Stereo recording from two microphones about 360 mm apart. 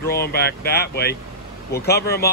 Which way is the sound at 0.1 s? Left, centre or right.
Left.